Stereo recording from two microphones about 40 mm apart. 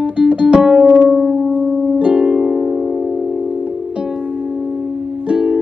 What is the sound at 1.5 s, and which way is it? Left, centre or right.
Music, right.